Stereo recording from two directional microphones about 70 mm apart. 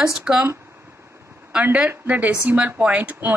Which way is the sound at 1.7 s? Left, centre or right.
Centre.